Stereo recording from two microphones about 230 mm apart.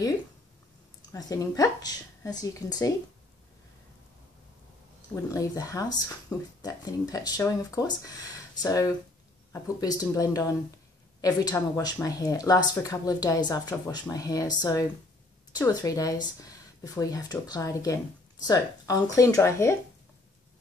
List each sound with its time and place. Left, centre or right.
1.1 s speech: centre
5.1 s speech: centre